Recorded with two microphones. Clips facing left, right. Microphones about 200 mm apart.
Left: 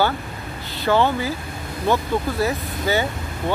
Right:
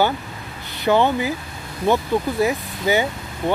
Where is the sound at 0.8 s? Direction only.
15° right (ahead or behind).